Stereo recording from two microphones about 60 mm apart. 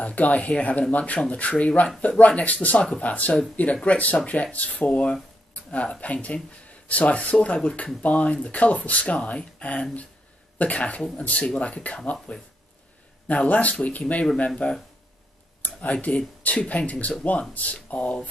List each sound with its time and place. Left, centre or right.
0.0 s speech: left